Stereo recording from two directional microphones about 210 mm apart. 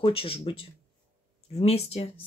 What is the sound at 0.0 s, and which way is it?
Speech, 25° left (ahead or behind).